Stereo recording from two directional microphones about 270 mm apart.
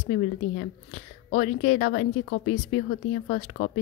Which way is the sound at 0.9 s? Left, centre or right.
Left.